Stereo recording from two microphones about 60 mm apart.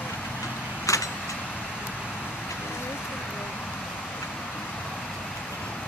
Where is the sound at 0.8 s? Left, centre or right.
Left.